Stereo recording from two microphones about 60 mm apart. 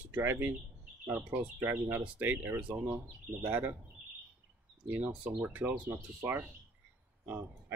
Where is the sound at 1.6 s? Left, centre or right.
Right.